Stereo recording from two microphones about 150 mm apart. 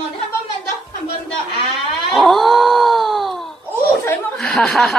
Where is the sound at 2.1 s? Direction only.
Centre (ahead or behind).